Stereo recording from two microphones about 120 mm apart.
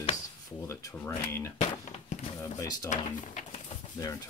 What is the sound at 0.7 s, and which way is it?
Speech, 25° left (ahead or behind).